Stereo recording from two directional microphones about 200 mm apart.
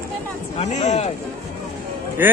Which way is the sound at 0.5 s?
35° left (ahead or behind).